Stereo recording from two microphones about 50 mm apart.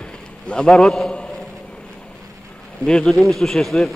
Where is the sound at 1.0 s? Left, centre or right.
Centre.